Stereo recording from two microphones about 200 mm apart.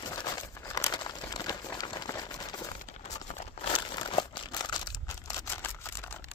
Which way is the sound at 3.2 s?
30° left (ahead or behind).